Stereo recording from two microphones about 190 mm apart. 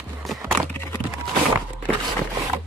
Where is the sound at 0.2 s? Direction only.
Centre (ahead or behind).